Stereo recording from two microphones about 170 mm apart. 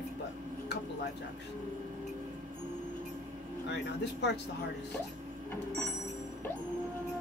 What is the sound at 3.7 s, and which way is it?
Speech, 85° left.